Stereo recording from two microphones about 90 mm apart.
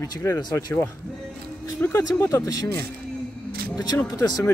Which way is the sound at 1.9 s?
35° left (ahead or behind).